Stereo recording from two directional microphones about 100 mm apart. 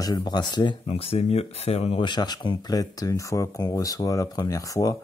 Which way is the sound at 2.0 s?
45° left (ahead or behind).